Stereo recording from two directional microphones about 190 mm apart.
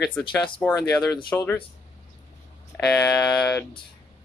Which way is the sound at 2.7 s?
10° left (ahead or behind).